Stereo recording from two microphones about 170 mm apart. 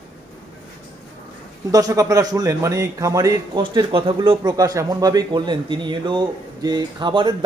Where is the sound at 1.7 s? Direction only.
20° right (ahead or behind).